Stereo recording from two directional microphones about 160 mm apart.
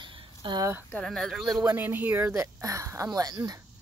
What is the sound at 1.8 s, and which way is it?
Speech, 10° right (ahead or behind).